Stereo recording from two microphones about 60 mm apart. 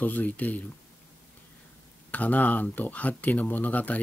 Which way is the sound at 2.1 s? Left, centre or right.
Left.